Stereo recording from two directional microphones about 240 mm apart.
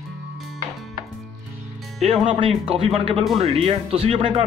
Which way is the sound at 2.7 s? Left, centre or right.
Right.